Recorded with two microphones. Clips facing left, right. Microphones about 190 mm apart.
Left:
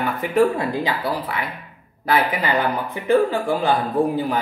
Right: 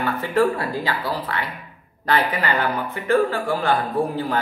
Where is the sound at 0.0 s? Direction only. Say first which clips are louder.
Left 2 dB; 15° left (ahead or behind).